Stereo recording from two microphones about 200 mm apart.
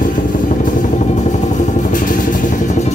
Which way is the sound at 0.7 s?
40° left (ahead or behind).